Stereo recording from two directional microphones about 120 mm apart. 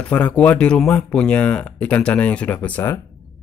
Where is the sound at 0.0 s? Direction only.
10° left (ahead or behind).